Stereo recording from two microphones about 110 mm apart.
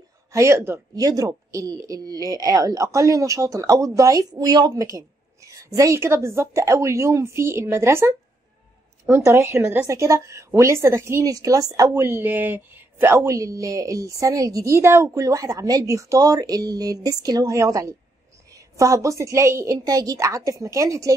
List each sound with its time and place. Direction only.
0.3 s a woman's voice: 25° right (ahead or behind)